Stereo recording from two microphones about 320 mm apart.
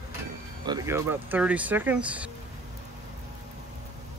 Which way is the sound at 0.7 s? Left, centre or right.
Centre.